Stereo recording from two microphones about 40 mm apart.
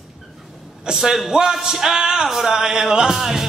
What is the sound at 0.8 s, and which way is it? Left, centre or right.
Music, centre.